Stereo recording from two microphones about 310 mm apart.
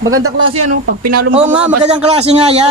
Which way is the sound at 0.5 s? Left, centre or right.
Right.